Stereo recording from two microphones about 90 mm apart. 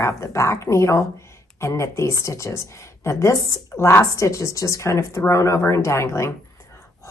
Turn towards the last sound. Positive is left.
turn(degrees=30)  # may be behind; listen again after turning